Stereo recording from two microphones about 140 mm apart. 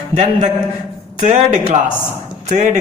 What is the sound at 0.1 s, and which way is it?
A man's voice, 55° right (ahead or behind).